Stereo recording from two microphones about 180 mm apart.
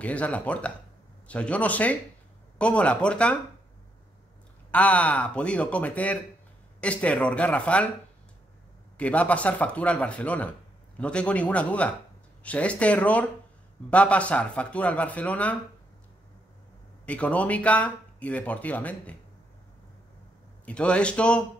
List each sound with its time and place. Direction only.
0.0 s speech: 5° left (ahead or behind)
4.6 s speech: 5° left (ahead or behind)
8.9 s speech: 5° left (ahead or behind)
17.0 s speech: 5° left (ahead or behind)
20.6 s a man's voice: 5° left (ahead or behind)